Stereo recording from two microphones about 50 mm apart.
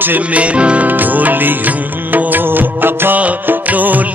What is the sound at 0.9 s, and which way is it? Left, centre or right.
Music, right.